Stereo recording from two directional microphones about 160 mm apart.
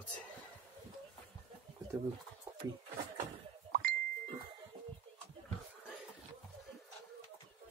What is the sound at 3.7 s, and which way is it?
Ding, 70° right (ahead or behind).